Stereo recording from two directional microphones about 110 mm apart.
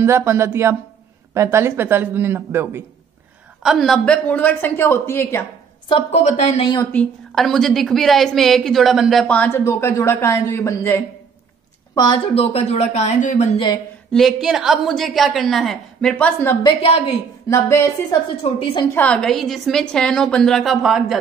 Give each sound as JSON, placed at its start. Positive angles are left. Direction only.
{"t": 0.0, "sound": "speech", "side_deg": -25}
{"t": 3.6, "sound": "a woman's voice", "side_deg": 0}
{"t": 6.1, "sound": "speech", "side_deg": 90}
{"t": 6.8, "sound": "a woman's voice", "side_deg": 15}
{"t": 7.3, "sound": "a woman's voice", "side_deg": 5}
{"t": 9.3, "sound": "a woman's voice", "side_deg": 15}
{"t": 9.7, "sound": "a woman's voice", "side_deg": 25}
{"t": 12.4, "sound": "speech", "side_deg": 70}
{"t": 14.1, "sound": "a woman's voice", "side_deg": 0}
{"t": 16.6, "sound": "a woman's voice", "side_deg": 60}
{"t": 17.5, "sound": "speech", "side_deg": 25}
{"t": 18.4, "sound": "speech", "side_deg": 90}
{"t": 18.9, "sound": "a woman's voice", "side_deg": 10}